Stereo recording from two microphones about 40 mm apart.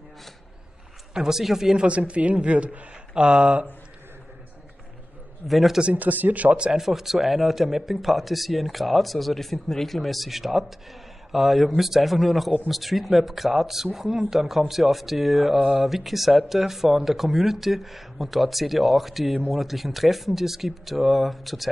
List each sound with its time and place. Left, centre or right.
1.1 s speech: centre
1.8 s a woman's voice: right
5.5 s speech: centre
5.9 s a woman's voice: right
6.8 s speech: centre